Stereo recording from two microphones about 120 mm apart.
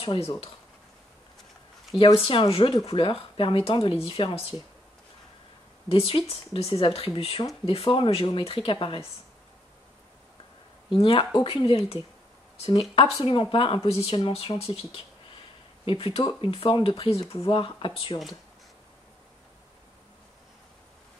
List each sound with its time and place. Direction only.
0.0 s speech: 55° left (ahead or behind)
2.1 s speech: 50° left (ahead or behind)
5.9 s speech: 50° left (ahead or behind)
10.9 s speech: 45° left (ahead or behind)